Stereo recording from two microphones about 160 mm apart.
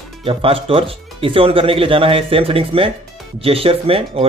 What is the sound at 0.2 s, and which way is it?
Speech, 35° right (ahead or behind).